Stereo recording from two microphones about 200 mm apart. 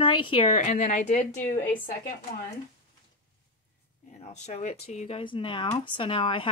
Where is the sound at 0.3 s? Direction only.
30° left (ahead or behind).